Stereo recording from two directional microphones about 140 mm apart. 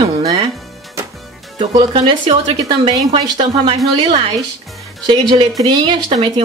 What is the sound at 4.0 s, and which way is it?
Speech, 35° right (ahead or behind).